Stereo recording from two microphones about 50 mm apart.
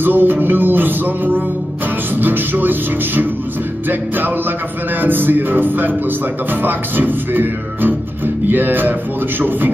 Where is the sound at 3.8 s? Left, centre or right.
Right.